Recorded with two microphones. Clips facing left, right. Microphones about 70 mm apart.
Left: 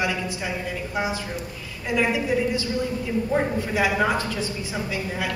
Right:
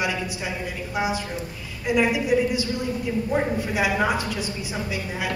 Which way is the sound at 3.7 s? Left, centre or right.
Centre.